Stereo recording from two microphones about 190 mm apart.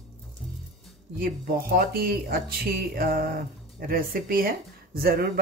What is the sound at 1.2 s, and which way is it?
Speech, 50° right (ahead or behind).